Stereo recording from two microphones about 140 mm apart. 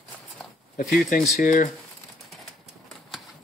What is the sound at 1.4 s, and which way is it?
Speech, 70° left (ahead or behind).